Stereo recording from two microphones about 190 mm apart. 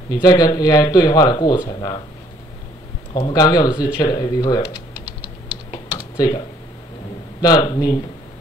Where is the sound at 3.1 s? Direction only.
20° left (ahead or behind).